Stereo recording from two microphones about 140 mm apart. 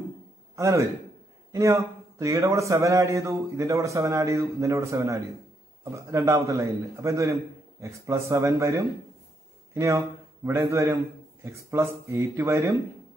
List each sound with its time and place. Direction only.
0.6 s a man's voice: 20° right (ahead or behind)